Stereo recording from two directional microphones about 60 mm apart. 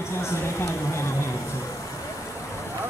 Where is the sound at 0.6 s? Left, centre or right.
Left.